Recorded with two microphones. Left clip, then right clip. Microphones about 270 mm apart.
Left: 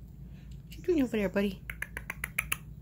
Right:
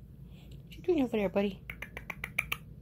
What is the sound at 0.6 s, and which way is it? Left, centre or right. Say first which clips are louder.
Finger snapping: left 1 dB; centre.